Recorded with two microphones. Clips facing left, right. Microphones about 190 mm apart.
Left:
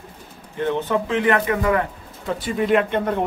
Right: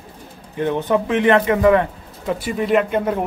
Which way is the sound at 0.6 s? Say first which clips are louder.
Right 3 dB; 15° right (ahead or behind).